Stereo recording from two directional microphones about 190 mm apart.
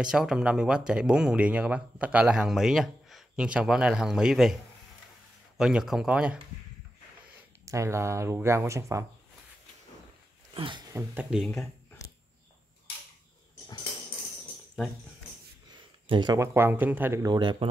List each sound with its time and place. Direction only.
0.0 s speech: 5° right (ahead or behind)
5.6 s speech: 5° right (ahead or behind)
7.6 s speech: 15° right (ahead or behind)
10.5 s a sound: 25° right (ahead or behind)
11.0 s speech: 5° right (ahead or behind)
15.7 s speech: 25° right (ahead or behind)